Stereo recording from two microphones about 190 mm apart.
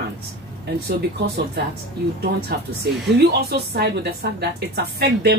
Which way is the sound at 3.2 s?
55° right (ahead or behind).